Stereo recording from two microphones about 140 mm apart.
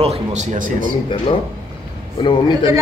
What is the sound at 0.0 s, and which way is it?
Speech, 50° right (ahead or behind).